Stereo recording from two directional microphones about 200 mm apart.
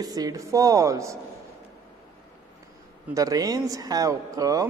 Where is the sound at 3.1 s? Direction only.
15° right (ahead or behind).